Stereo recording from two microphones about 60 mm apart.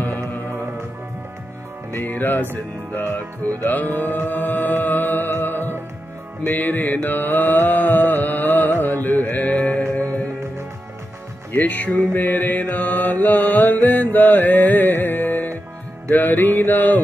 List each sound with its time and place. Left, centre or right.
0.5 s music: right
1.9 s music: left
2.5 s mantra: left
3.9 s music: left
9.6 s mantra: left
11.5 s music: left
16.1 s mantra: left